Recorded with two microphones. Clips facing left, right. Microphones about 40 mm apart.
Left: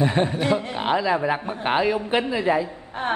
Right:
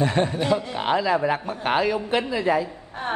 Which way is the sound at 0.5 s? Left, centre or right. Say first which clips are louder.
Even; left.